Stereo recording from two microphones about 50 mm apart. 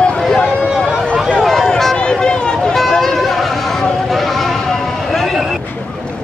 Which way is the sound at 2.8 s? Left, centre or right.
Centre.